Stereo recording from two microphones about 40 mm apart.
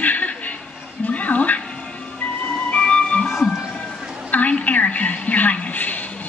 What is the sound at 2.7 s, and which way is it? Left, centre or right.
Music, left.